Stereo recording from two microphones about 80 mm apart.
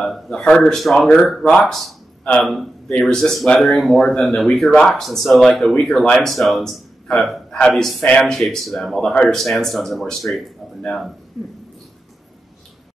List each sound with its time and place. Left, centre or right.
0.0 s speech: centre
11.4 s speech: centre